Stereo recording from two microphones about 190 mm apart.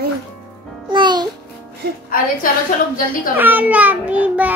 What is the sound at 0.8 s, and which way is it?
Babbling, 25° right (ahead or behind).